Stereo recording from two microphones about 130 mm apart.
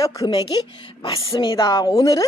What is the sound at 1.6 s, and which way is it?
Speech, 30° left (ahead or behind).